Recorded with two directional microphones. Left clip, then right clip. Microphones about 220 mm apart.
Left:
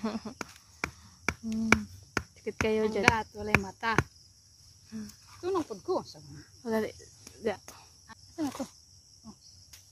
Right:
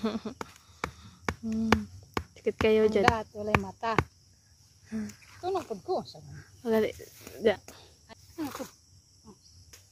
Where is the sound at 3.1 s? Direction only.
40° left (ahead or behind).